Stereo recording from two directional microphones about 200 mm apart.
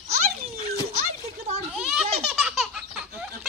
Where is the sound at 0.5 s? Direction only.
45° right (ahead or behind).